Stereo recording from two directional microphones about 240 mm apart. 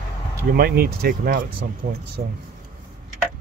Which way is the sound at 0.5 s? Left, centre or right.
Right.